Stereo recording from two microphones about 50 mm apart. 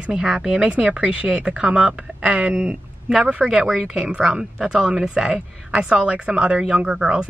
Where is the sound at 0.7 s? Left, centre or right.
Right.